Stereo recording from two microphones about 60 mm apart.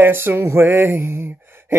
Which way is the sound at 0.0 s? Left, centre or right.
Right.